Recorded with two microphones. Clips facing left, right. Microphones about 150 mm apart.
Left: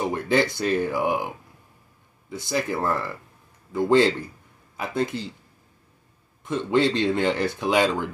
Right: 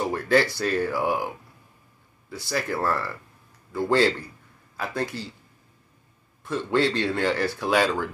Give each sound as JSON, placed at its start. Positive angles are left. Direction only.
{"t": 0.0, "sound": "speech", "side_deg": 20}
{"t": 6.4, "sound": "speech", "side_deg": 20}